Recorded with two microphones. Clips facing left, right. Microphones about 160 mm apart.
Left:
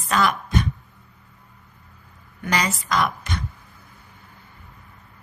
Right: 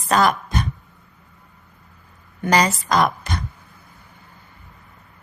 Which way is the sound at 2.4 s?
35° right (ahead or behind).